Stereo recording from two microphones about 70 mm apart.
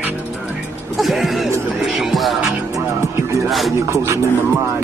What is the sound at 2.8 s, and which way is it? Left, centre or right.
Music, right.